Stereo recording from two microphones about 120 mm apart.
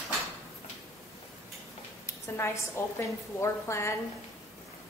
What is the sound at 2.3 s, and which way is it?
A woman's voice, 25° left (ahead or behind).